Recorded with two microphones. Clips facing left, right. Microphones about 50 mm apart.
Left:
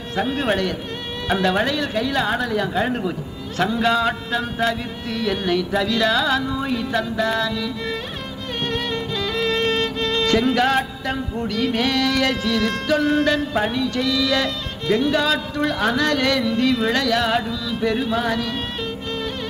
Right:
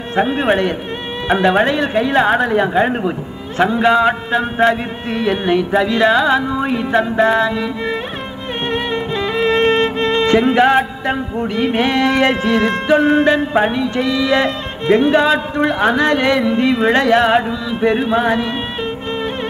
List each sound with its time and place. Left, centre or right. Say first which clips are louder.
0.1 s speech: right 6 dB; right